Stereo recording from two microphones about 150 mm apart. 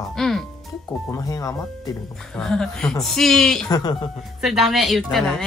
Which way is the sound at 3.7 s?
25° left (ahead or behind).